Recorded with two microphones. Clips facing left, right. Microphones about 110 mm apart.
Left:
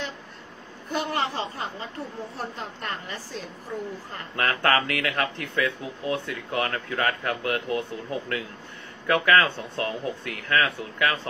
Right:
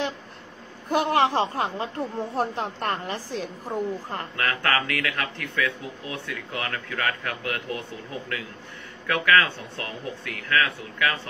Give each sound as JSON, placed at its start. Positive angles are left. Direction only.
{"t": 0.8, "sound": "speech", "side_deg": -55}
{"t": 4.4, "sound": "speech", "side_deg": 30}
{"t": 9.0, "sound": "speech", "side_deg": 30}